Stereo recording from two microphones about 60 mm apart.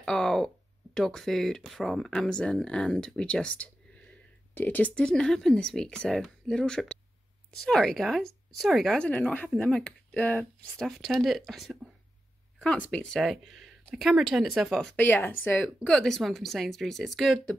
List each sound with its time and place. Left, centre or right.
0.0 s a sound: centre
0.9 s speech: centre
4.6 s speech: left
4.9 s speech: centre
8.9 s speech: left
10.8 s speech: centre
12.5 s speech: centre
13.2 s speech: centre
15.0 s speech: left
15.8 s speech: centre